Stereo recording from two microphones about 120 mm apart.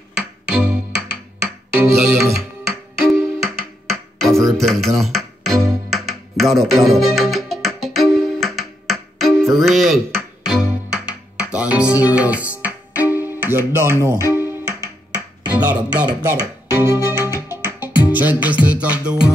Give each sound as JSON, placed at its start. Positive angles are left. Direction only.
{"t": 0.5, "sound": "music", "side_deg": -5}
{"t": 15.4, "sound": "speech", "side_deg": -10}
{"t": 16.3, "sound": "speech", "side_deg": -20}
{"t": 17.5, "sound": "music", "side_deg": -20}